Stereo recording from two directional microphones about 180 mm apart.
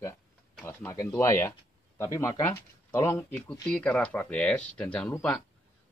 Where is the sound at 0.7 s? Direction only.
15° left (ahead or behind).